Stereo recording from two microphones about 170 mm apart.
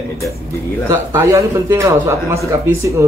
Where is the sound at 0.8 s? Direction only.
15° right (ahead or behind).